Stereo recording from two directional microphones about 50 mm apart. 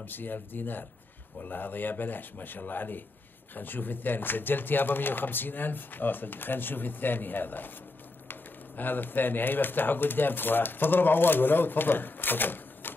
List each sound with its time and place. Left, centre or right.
0.0 s speech: left